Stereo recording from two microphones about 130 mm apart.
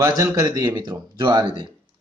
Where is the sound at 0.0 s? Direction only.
25° right (ahead or behind).